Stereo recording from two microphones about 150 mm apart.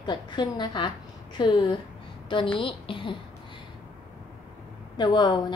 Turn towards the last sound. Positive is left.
turn(degrees=30)  # may be behind; listen again after turning